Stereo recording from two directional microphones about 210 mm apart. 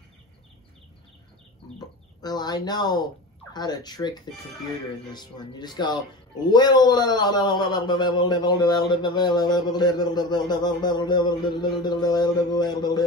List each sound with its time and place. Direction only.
2.2 s a man's voice: 20° left (ahead or behind)